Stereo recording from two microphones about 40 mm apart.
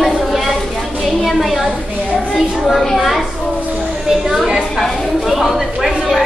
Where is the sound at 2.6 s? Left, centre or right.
Centre.